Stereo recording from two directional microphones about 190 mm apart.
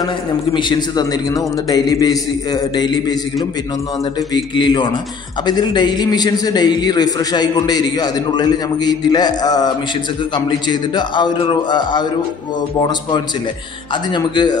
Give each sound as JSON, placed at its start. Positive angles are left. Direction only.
{"t": 0.3, "sound": "a man's voice", "side_deg": 20}
{"t": 4.3, "sound": "a man's voice", "side_deg": 25}
{"t": 14.1, "sound": "a man's voice", "side_deg": 25}